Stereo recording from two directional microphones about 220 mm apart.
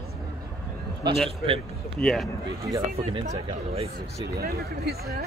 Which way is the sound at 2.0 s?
5° left (ahead or behind).